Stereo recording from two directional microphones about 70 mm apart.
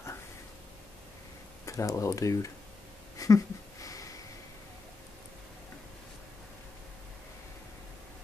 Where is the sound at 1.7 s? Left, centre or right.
Left.